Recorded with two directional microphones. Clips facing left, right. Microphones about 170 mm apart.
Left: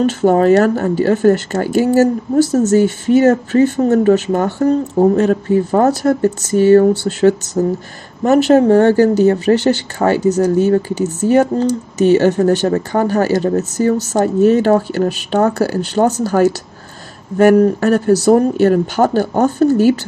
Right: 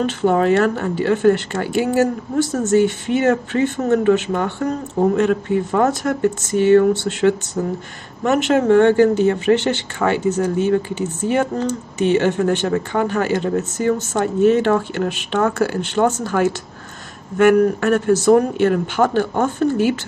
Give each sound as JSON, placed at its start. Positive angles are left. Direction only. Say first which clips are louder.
{"t": 0.0, "sound": "speech", "louder": "left 5 dB", "side_deg": 40}